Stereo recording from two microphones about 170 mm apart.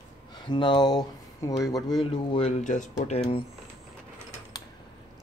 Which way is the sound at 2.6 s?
45° left (ahead or behind).